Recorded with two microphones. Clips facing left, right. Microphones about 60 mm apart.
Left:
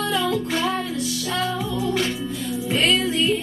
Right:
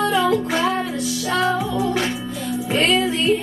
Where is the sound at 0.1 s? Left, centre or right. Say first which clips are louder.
Right 4 dB; right.